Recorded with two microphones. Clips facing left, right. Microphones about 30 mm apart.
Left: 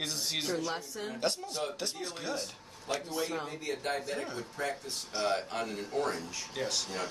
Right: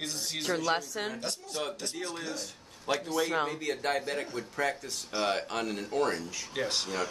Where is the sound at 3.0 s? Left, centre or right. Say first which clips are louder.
Right 5 dB; right.